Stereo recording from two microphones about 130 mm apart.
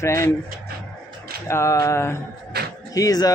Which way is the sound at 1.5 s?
20° left (ahead or behind).